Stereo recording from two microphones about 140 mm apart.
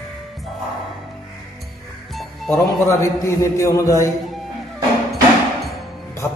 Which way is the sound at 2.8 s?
20° left (ahead or behind).